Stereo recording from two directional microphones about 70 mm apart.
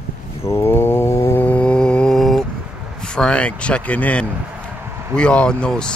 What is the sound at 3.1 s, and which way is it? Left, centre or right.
Speech, centre.